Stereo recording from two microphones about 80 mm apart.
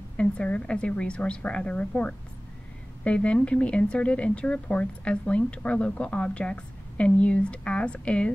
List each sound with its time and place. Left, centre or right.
0.2 s speech: centre